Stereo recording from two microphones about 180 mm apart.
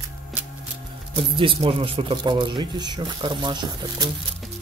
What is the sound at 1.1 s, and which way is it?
Speech, 30° right (ahead or behind).